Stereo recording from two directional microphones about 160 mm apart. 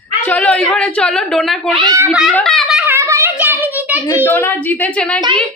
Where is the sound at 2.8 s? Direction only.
15° right (ahead or behind).